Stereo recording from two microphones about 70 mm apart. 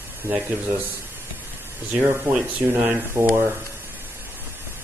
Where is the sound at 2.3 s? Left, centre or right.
Right.